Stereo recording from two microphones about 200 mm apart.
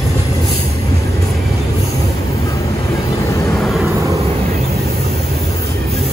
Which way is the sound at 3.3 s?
15° left (ahead or behind).